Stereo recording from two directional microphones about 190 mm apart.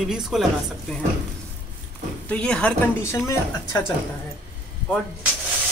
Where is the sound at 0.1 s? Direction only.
Centre (ahead or behind).